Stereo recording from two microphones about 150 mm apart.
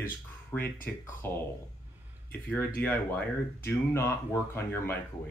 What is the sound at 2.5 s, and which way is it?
Speech, 10° left (ahead or behind).